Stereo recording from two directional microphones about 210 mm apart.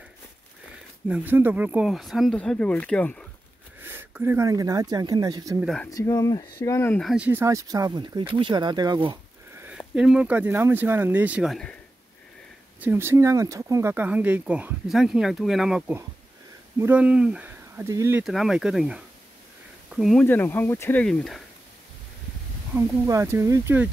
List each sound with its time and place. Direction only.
1.0 s speech: 10° right (ahead or behind)
3.8 s speech: 10° right (ahead or behind)
5.9 s speech: 15° left (ahead or behind); by 9.7 s 20° right (ahead or behind)
9.7 s speech: 5° right (ahead or behind)
12.8 s speech: 10° right (ahead or behind)
18.2 s speech: centre (ahead or behind)
22.8 s speech: 15° right (ahead or behind)